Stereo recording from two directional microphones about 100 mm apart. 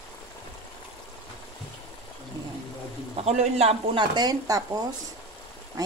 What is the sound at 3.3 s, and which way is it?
Speech, 90° right.